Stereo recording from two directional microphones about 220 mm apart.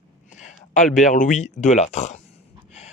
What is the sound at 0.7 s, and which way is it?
Speech, 35° left (ahead or behind).